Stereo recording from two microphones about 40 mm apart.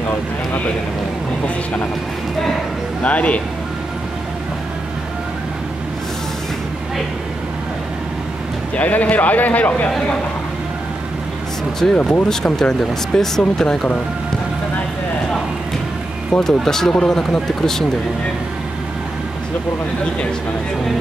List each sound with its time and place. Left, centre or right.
3.0 s a man's voice: left
8.7 s a man's voice: left
11.9 s speech: left
12.3 s speech: centre
16.3 s speech: centre